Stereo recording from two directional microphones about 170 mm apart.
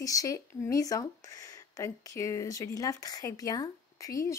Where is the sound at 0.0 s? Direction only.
20° left (ahead or behind).